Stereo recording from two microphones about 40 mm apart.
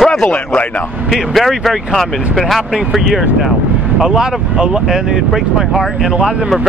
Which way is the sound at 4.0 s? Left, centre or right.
Centre.